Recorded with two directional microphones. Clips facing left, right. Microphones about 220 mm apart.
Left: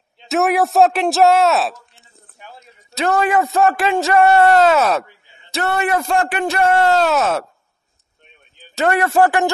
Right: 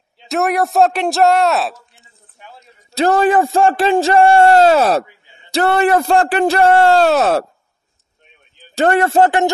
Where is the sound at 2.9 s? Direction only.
30° right (ahead or behind).